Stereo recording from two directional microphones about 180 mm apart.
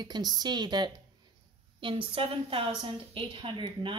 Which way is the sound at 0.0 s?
25° right (ahead or behind).